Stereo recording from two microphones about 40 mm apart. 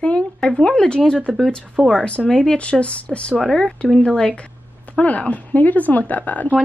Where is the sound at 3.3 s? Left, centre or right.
Centre.